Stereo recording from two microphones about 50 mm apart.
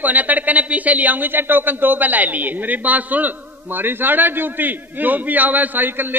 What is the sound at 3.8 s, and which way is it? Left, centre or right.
A woman's voice, right.